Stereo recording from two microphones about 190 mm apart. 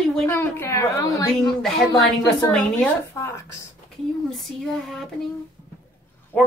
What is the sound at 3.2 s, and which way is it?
Speech, 15° left (ahead or behind).